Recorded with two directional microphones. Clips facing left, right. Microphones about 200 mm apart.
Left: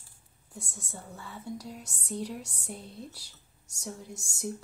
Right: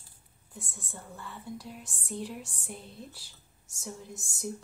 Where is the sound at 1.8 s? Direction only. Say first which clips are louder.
Left 1 dB; 45° left (ahead or behind).